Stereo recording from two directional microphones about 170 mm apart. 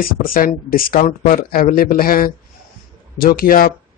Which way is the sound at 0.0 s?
55° left (ahead or behind).